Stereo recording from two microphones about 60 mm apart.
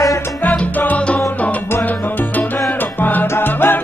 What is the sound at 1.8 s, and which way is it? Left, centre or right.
Salsa music, left.